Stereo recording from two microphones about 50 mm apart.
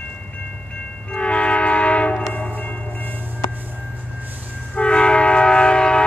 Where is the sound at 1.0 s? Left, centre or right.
Left.